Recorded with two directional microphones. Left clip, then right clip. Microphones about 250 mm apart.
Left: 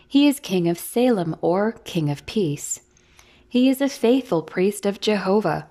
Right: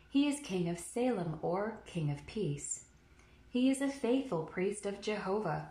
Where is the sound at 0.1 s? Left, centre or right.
Left.